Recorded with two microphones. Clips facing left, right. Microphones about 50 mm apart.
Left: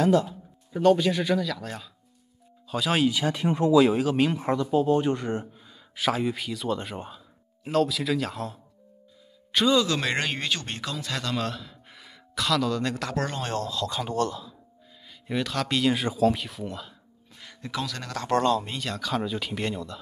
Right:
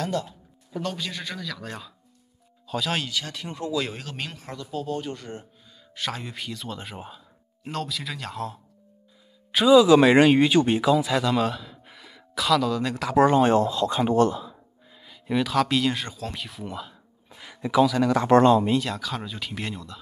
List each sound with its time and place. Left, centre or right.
0.7 s speech: centre
3.1 s speech: centre
3.7 s speech: centre
4.4 s speech: left
5.9 s speech: centre
13.2 s speech: centre
15.0 s speech: centre; by 18.7 s right
18.7 s speech: centre